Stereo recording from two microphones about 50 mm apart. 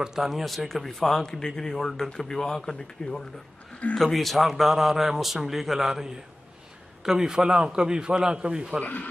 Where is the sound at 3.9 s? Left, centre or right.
Centre.